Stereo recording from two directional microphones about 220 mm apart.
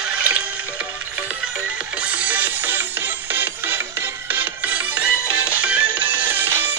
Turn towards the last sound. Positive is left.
turn(degrees=-10)  # may be behind; listen again after turning